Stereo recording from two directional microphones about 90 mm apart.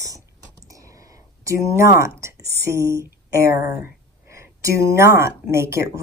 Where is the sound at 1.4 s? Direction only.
35° right (ahead or behind).